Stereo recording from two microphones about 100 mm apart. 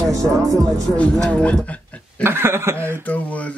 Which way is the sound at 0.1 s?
30° right (ahead or behind).